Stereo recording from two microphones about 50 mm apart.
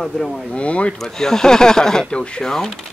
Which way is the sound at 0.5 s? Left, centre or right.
Left.